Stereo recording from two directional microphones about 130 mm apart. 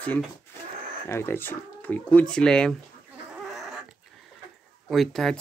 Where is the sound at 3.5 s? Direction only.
5° right (ahead or behind).